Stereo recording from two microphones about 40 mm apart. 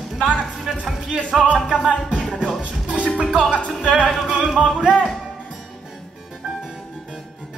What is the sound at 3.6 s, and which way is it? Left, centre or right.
Music, left.